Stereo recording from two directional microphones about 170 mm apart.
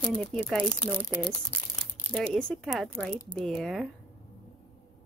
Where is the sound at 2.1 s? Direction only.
5° left (ahead or behind).